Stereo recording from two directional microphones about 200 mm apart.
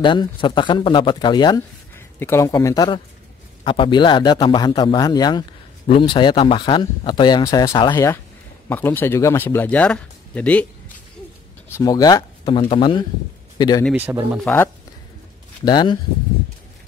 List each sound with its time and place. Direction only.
0.0 s speech: 25° left (ahead or behind); by 10.7 s 5° left (ahead or behind)
11.7 s speech: 20° left (ahead or behind)
13.9 s speech: 10° right (ahead or behind)
14.4 s speech: 10° left (ahead or behind)
15.6 s speech: 20° left (ahead or behind)